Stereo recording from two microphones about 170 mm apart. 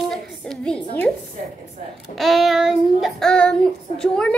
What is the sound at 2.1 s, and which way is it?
A child's voice, centre (ahead or behind).